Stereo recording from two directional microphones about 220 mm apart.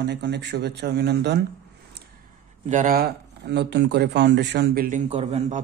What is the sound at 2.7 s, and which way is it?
Speech, 35° right (ahead or behind).